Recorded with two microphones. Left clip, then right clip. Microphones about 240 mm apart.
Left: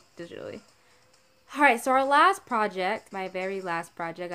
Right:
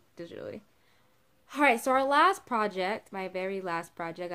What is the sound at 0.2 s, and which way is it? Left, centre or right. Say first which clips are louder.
A woman's voice: left 2 dB; centre.